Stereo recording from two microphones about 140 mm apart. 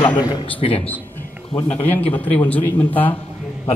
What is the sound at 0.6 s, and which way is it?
Speech, 40° left (ahead or behind).